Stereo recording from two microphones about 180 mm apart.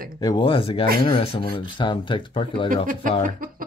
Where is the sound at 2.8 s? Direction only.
50° right (ahead or behind).